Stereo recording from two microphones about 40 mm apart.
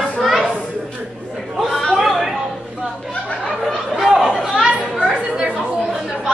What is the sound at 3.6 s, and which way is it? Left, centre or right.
Chatter, centre.